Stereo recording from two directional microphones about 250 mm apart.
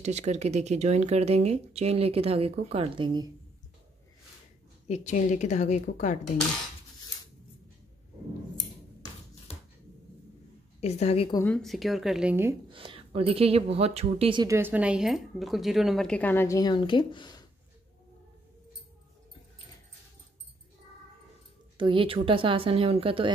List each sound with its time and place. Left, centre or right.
0.0 s speech: right
4.8 s speech: left
10.8 s speech: left
11.4 s speech: centre
12.7 s speech: right; by 17.5 s centre
21.7 s speech: right